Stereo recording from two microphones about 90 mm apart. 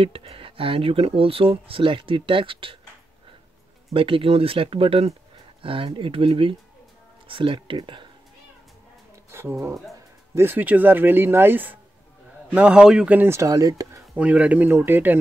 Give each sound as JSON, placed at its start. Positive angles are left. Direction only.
{"t": 0.0, "sound": "speech", "side_deg": -90}
{"t": 3.9, "sound": "speech", "side_deg": -85}
{"t": 5.6, "sound": "speech", "side_deg": -80}
{"t": 7.2, "sound": "speech", "side_deg": -70}
{"t": 9.3, "sound": "a man's voice", "side_deg": -30}
{"t": 13.1, "sound": "speech", "side_deg": -20}
{"t": 13.4, "sound": "speech", "side_deg": -40}
{"t": 14.1, "sound": "speech", "side_deg": -15}